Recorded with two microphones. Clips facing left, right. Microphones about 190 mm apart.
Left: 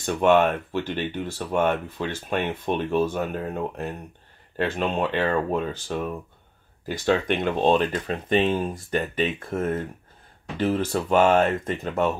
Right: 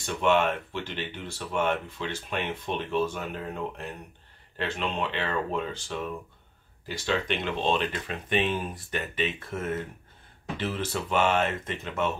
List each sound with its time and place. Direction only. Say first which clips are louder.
0.0 s speech: left 5 dB; 45° left (ahead or behind)